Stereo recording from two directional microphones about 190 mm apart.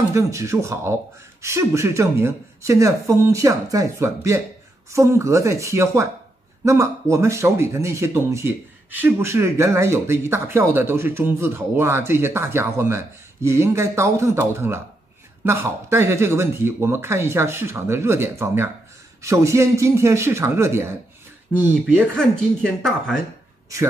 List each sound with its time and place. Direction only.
0.1 s speech: 15° right (ahead or behind)